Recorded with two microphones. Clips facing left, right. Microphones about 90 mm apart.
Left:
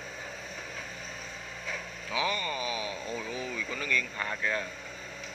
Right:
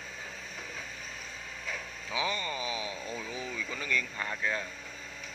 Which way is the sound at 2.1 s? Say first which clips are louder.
Left 2 dB; 20° right (ahead or behind).